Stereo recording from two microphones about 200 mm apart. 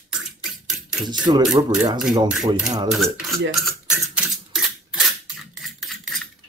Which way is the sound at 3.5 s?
5° right (ahead or behind).